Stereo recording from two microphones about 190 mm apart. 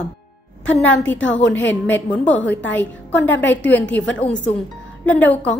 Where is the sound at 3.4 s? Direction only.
70° left (ahead or behind).